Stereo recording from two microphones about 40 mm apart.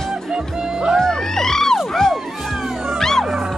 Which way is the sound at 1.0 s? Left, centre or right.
Centre.